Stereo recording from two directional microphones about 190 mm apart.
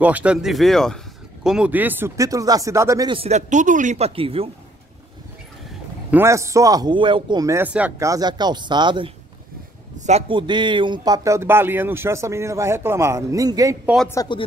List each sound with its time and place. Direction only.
0.0 s speech: 5° right (ahead or behind); by 4.5 s 30° right (ahead or behind)
6.0 s speech: 10° right (ahead or behind)
9.9 s a man's voice: 35° right (ahead or behind); by 13.7 s 20° right (ahead or behind)
14.0 s speech: 20° left (ahead or behind)